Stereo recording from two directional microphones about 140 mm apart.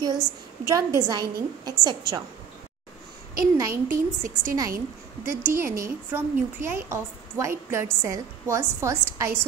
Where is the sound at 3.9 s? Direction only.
20° right (ahead or behind).